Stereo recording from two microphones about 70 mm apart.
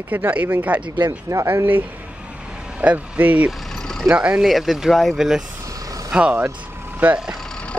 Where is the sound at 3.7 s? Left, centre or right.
Centre.